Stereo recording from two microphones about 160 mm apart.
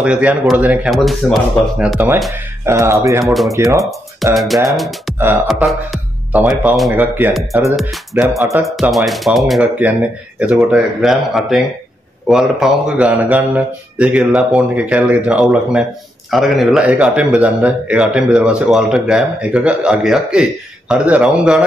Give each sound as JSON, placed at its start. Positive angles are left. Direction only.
{"t": 0.0, "sound": "speech", "side_deg": -5}
{"t": 2.6, "sound": "speech", "side_deg": -15}
{"t": 3.3, "sound": "a man's voice", "side_deg": 0}
{"t": 7.9, "sound": "a man's voice", "side_deg": 0}
{"t": 8.4, "sound": "speech", "side_deg": -20}
{"t": 8.9, "sound": "a man's voice", "side_deg": 0}